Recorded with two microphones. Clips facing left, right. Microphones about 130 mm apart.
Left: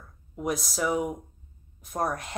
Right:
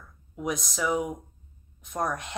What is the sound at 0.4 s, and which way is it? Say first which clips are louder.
A woman's voice: left 1 dB; 5° left (ahead or behind).